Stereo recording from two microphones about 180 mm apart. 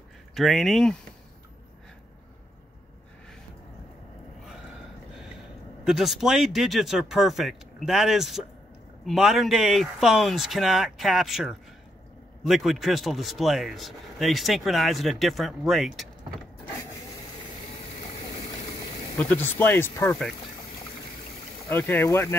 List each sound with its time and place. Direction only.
0.3 s speech: centre (ahead or behind)
5.9 s speech: centre (ahead or behind)
19.1 s speech: 10° left (ahead or behind)
21.6 s speech: 10° left (ahead or behind)